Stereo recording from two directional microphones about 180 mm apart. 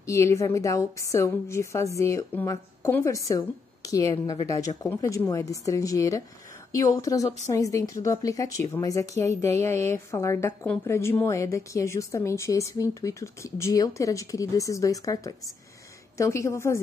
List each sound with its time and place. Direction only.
0.0 s speech: 15° left (ahead or behind)